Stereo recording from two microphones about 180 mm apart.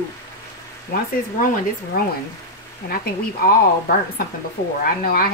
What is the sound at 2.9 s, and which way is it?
Speech, 55° left (ahead or behind).